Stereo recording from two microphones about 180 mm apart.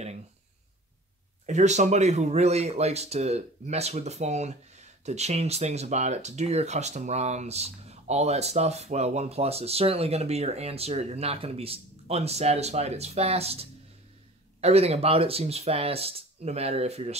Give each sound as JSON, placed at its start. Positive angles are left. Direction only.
{"t": 1.4, "sound": "speech", "side_deg": -40}